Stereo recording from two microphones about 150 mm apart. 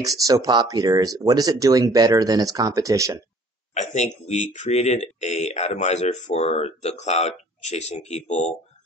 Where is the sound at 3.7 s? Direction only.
50° left (ahead or behind).